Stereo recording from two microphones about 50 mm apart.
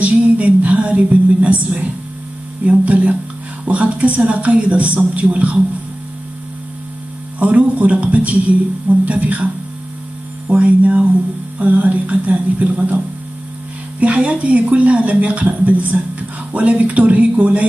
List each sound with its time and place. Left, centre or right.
0.0 s a woman's voice: right
7.3 s speech: right
10.5 s speech: right
13.9 s speech: right